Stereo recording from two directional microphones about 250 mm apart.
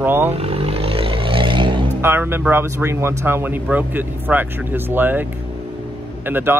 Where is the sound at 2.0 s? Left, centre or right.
Centre.